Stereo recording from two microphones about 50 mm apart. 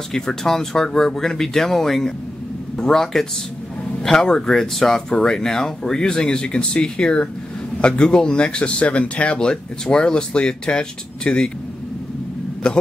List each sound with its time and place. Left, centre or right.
0.1 s speech: centre
12.6 s speech: centre